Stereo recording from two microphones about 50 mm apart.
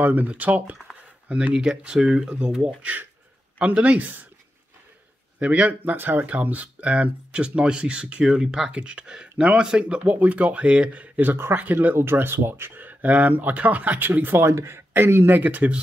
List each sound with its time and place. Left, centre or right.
0.0 s speech: right
1.5 s speech: centre
2.8 s speech: right
5.4 s speech: right
5.8 s speech: right
11.2 s speech: right
11.5 s speech: right
11.9 s speech: right
14.4 s speech: right